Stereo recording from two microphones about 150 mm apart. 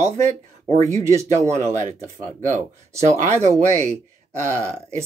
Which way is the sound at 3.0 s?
50° right (ahead or behind).